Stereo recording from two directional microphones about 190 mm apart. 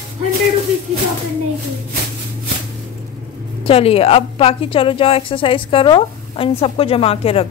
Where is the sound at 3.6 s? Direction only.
30° left (ahead or behind).